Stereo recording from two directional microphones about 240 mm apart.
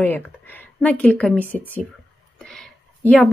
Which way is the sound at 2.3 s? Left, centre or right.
Centre.